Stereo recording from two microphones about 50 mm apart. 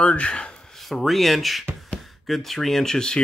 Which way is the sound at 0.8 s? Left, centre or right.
Centre.